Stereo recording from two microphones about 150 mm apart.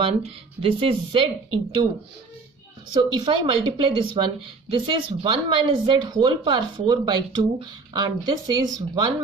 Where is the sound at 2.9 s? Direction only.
30° right (ahead or behind).